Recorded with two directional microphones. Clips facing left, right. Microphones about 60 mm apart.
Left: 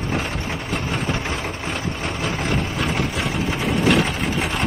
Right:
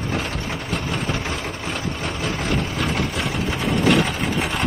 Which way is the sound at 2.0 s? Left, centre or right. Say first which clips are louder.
Left 1 dB; left.